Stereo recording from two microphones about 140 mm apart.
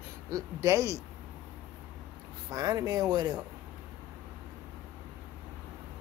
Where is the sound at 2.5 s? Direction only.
25° right (ahead or behind).